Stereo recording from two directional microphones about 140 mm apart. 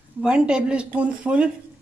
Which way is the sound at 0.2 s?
5° right (ahead or behind).